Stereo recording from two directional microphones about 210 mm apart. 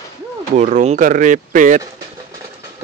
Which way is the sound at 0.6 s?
35° right (ahead or behind).